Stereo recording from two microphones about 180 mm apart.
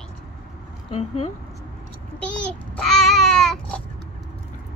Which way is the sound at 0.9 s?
35° left (ahead or behind).